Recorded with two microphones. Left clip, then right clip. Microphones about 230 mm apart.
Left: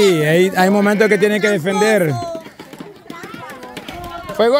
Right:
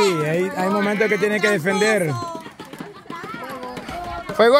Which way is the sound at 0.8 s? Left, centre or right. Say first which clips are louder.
Left 6 dB; left.